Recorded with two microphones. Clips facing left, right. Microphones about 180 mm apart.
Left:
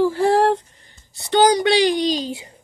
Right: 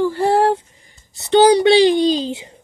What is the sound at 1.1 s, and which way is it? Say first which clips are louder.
Speech: right 4 dB; 25° right (ahead or behind).